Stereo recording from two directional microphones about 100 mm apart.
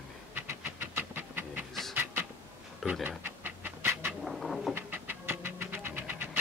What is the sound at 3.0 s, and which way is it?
Dog, 20° right (ahead or behind).